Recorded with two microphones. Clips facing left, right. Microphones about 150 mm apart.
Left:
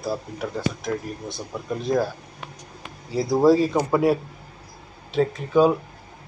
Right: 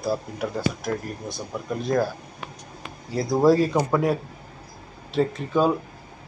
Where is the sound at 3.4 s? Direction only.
Centre (ahead or behind).